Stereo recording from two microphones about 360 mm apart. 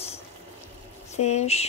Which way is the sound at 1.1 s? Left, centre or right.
Centre.